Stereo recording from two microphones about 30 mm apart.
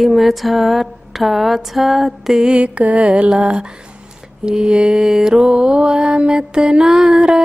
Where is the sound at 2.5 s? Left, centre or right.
Right.